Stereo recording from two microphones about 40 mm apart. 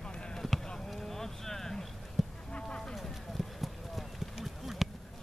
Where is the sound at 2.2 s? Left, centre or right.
Centre.